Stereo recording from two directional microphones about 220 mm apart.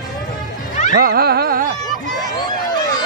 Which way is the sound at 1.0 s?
45° right (ahead or behind).